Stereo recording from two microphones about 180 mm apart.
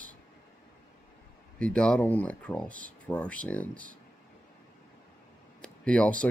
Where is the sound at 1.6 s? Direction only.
5° left (ahead or behind).